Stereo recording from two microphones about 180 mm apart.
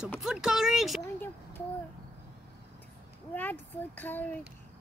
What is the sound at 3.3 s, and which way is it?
Speech, 10° left (ahead or behind).